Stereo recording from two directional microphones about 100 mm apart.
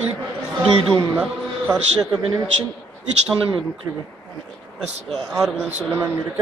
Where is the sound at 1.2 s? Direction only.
10° right (ahead or behind).